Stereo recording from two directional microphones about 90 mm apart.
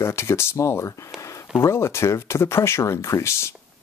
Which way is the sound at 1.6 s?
30° left (ahead or behind).